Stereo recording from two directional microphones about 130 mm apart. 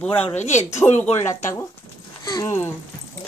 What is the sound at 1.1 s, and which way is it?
Speech, 20° left (ahead or behind).